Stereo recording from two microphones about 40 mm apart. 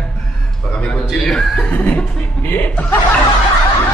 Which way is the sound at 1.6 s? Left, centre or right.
Left.